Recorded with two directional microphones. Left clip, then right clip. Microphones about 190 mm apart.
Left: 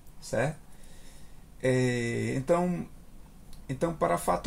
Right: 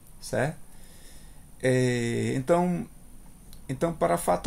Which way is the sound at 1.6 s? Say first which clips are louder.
Right 2 dB; 25° right (ahead or behind).